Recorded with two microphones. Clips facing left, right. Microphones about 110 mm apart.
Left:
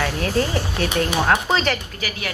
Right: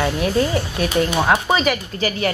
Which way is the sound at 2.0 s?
35° right (ahead or behind).